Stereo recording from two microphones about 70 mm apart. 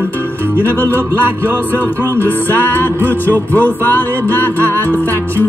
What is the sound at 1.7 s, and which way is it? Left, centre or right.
Music, left.